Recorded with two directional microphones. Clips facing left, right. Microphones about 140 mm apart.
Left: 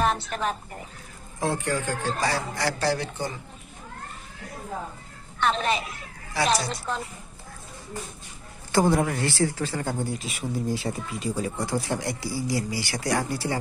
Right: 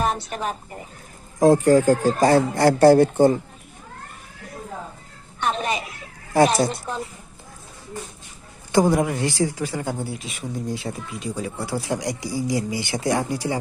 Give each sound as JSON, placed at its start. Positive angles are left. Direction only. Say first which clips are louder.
{"t": 1.4, "sound": "speech", "louder": "right 12 dB", "side_deg": -40}
{"t": 5.4, "sound": "speech", "louder": "even", "side_deg": -15}
{"t": 6.3, "sound": "speech", "louder": "right 7 dB", "side_deg": -50}
{"t": 8.7, "sound": "speech", "louder": "right 3 dB", "side_deg": -15}